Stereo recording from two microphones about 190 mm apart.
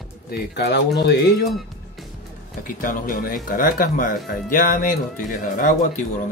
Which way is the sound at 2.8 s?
45° left (ahead or behind).